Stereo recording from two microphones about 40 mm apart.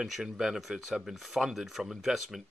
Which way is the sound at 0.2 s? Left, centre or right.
Centre.